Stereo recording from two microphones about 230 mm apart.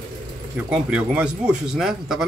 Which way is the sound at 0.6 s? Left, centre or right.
Centre.